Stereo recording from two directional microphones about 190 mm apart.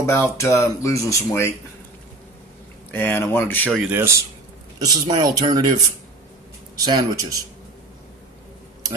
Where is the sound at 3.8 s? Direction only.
10° right (ahead or behind).